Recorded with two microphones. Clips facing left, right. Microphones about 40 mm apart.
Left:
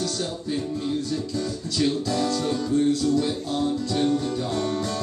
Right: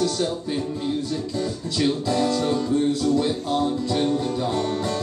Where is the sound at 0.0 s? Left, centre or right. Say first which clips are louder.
Right 5 dB; centre.